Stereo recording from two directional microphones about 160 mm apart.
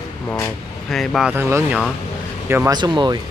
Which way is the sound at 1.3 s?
15° right (ahead or behind).